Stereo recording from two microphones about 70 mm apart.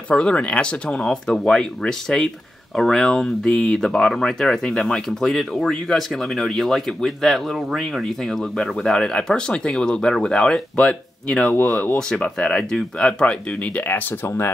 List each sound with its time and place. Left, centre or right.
0.1 s speech: centre
12.1 s speech: centre
13.8 s speech: left